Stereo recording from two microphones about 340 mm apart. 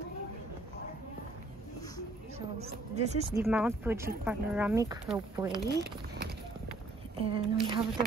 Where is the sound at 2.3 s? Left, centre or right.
Centre.